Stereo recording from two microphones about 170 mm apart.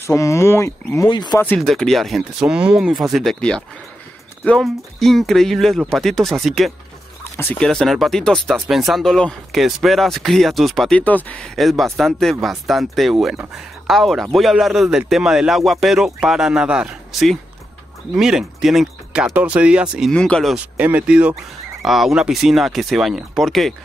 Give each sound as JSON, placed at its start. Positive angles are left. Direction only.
{"t": 0.0, "sound": "speech", "side_deg": 20}
{"t": 1.4, "sound": "speech", "side_deg": 5}
{"t": 20.1, "sound": "speech", "side_deg": 5}
{"t": 20.5, "sound": "speech", "side_deg": -10}